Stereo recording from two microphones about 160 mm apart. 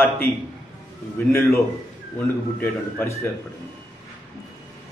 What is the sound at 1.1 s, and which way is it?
A man's voice, 15° left (ahead or behind).